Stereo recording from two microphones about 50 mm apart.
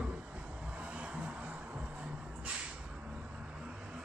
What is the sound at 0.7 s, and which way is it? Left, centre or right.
Vehicle, right.